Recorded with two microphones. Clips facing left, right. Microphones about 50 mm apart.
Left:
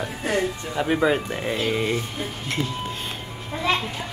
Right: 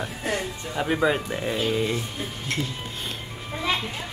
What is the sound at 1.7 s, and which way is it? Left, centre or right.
Speech, left.